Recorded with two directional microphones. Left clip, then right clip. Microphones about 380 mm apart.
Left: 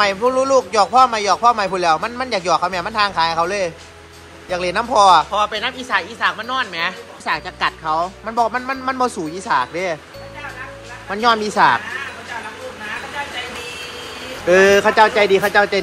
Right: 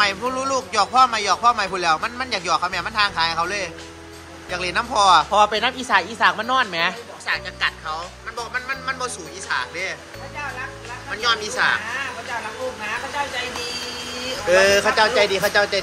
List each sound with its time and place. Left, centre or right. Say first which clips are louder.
0.0 s speech: left 5 dB; centre
7.2 s speech: left 3 dB; centre
11.1 s speech: left 5 dB; centre
14.5 s speech: left 4 dB; centre